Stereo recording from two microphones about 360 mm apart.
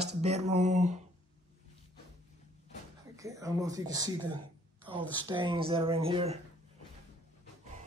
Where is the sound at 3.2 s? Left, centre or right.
Centre.